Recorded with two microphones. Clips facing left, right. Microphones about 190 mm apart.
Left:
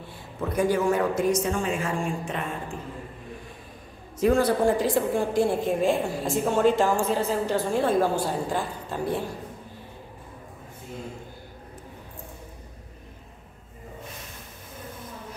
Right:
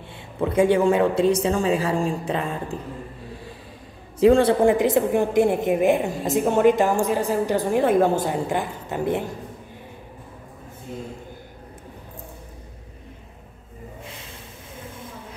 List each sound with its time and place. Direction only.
0.5 s a woman's voice: 25° right (ahead or behind)
4.2 s a woman's voice: 30° right (ahead or behind)